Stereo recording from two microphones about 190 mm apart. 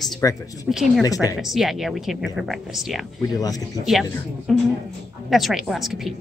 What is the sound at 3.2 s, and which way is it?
Speech, 20° left (ahead or behind).